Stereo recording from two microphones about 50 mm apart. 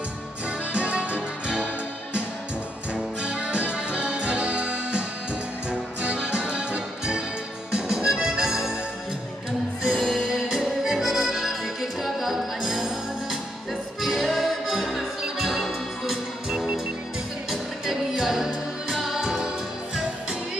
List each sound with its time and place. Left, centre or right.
0.5 s music: right
2.9 s accordion: right
7.7 s music: centre
9.8 s accordion: centre
14.2 s music: centre